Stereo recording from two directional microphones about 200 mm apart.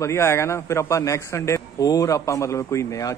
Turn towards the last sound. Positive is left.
turn(degrees=15)  # may be behind; listen again after turning